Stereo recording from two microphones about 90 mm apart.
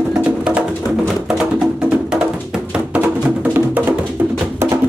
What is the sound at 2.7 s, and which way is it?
Music, 15° right (ahead or behind).